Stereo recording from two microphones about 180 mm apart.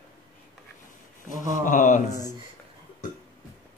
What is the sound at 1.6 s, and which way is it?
Mantra, 45° left (ahead or behind).